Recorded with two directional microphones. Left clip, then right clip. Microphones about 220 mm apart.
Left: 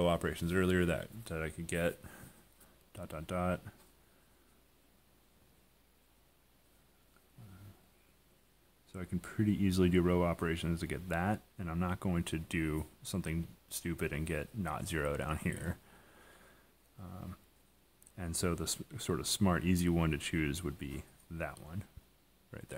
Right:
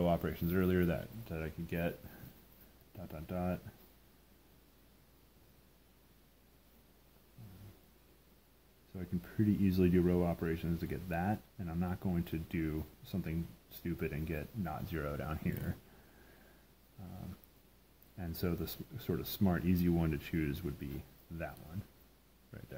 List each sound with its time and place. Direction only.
0.0 s speech: 35° left (ahead or behind)
8.9 s speech: 30° left (ahead or behind)
18.1 s speech: 30° left (ahead or behind)